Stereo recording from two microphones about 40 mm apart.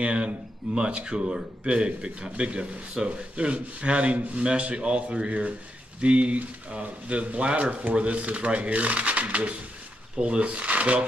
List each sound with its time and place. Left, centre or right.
0.0 s speech: right